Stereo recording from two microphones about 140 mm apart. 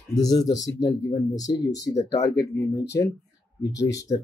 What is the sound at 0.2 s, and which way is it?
Speech, 25° left (ahead or behind).